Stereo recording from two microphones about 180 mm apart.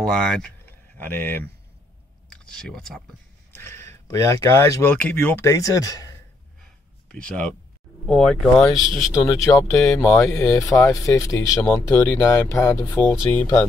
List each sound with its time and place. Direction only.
0.0 s speech: 5° left (ahead or behind)
3.5 s speech: 15° left (ahead or behind)
6.6 s a sound: 5° left (ahead or behind)
8.1 s speech: 5° left (ahead or behind)
9.1 s speech: 15° left (ahead or behind)